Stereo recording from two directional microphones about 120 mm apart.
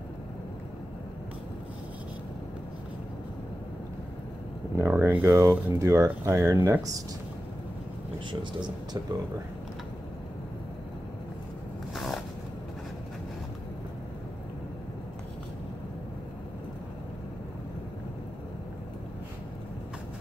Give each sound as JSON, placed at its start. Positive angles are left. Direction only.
{"t": 4.7, "sound": "speech", "side_deg": -20}
{"t": 8.3, "sound": "speech", "side_deg": -40}
{"t": 11.9, "sound": "a sound", "side_deg": 0}